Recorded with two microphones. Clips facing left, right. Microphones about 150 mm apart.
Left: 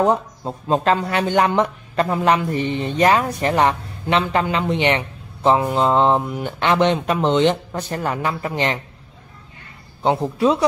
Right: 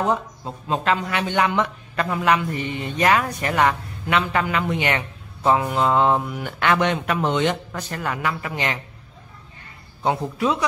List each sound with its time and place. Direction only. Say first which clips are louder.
0.0 s speech: left 5 dB; 35° left (ahead or behind)
10.0 s speech: left 4 dB; 30° left (ahead or behind)